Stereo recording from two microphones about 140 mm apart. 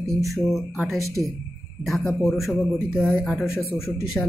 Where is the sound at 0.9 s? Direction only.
20° right (ahead or behind).